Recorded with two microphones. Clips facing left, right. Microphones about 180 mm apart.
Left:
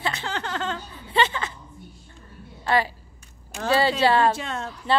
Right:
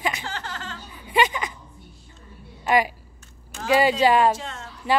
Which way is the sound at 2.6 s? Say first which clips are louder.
Right 2 dB; 15° right (ahead or behind).